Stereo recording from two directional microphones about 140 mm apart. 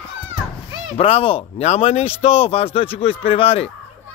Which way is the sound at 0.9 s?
45° left (ahead or behind).